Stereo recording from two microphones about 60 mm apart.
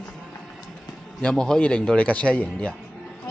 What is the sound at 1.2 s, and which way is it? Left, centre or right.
A man's voice, centre.